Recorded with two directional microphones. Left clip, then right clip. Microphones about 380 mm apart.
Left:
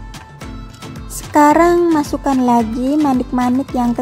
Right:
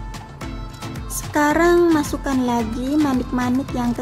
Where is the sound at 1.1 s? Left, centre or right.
Centre.